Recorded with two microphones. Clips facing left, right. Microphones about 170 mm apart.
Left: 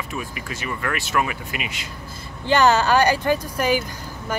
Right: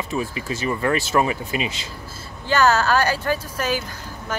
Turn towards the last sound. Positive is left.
turn(degrees=10)  # may be behind; listen again after turning